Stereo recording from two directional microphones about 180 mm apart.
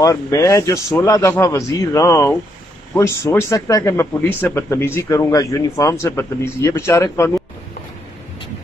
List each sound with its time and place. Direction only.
0.0 s speech: 20° left (ahead or behind)